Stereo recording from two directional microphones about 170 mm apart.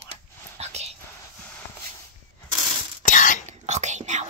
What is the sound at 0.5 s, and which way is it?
Whispering, 40° right (ahead or behind).